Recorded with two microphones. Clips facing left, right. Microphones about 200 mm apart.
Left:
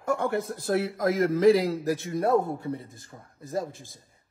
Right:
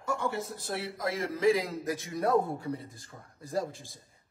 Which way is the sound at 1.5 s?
30° left (ahead or behind).